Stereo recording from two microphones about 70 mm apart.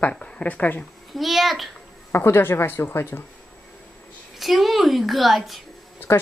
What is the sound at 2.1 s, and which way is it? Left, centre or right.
A woman's voice, left.